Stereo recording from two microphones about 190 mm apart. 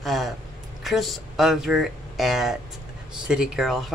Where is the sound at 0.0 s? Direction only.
Centre (ahead or behind).